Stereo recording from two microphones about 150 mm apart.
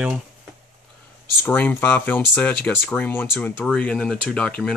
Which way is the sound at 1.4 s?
10° left (ahead or behind).